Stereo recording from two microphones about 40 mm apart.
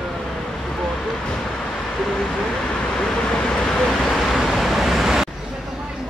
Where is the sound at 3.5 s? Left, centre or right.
Left.